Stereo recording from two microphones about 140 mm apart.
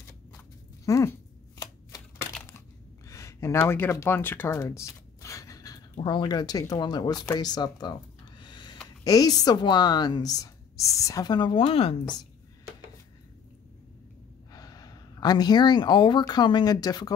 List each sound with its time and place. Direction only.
0.8 s a sound: 20° left (ahead or behind)
3.1 s gasp: 20° left (ahead or behind)
5.9 s a woman's voice: 35° left (ahead or behind)
8.4 s a sound: 30° left (ahead or behind)
9.0 s a woman's voice: 25° left (ahead or behind); by 12.0 s 45° left (ahead or behind)
14.5 s speech: 25° left (ahead or behind)